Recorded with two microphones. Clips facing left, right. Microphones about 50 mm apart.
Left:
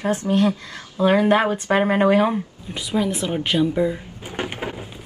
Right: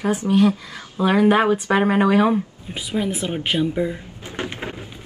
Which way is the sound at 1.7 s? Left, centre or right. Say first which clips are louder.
Left 1 dB; centre.